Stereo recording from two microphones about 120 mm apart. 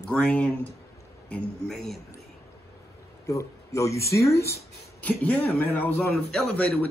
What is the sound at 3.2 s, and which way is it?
A man's voice, 25° left (ahead or behind).